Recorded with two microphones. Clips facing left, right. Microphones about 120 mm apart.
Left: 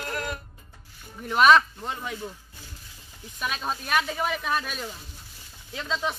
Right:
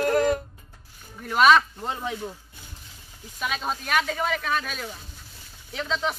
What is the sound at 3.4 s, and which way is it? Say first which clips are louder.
Speech: right 1 dB; centre (ahead or behind).